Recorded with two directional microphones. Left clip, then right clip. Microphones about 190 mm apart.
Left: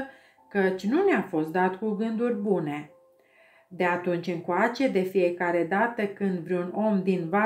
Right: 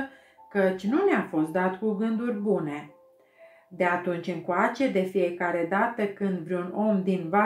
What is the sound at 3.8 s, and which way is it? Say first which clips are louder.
Speech: even; 35° left (ahead or behind).